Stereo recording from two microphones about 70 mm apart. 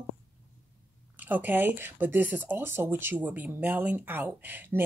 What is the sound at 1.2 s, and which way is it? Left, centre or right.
Speech, right.